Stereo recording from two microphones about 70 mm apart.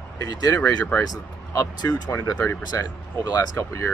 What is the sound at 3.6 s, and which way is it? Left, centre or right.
Speech, left.